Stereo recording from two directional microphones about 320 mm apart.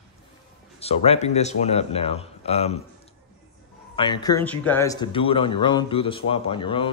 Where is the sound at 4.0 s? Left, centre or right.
Centre.